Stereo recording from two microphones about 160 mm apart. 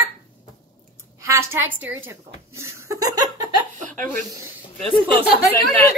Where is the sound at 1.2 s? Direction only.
20° right (ahead or behind).